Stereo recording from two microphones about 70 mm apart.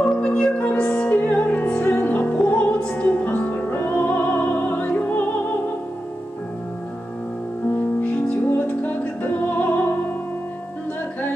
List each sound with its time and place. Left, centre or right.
0.0 s music: centre
8.0 s music: left